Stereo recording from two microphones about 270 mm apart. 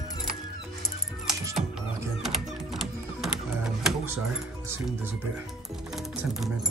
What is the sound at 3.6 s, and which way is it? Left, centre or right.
Music, centre.